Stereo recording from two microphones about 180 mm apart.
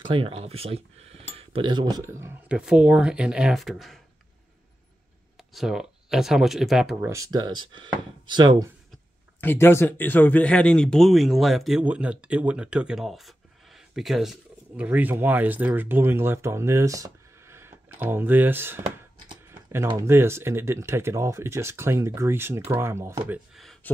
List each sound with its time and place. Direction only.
0.0 s a man's voice: 30° right (ahead or behind); by 4.0 s centre (ahead or behind)
5.4 s speech: centre (ahead or behind)
7.1 s speech: 20° right (ahead or behind)
9.4 s a man's voice: 10° left (ahead or behind); by 18.9 s 10° right (ahead or behind)
19.9 s a man's voice: 15° right (ahead or behind); by 23.9 s centre (ahead or behind)